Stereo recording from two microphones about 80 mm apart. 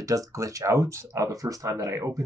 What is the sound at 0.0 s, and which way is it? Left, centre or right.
Speech, right.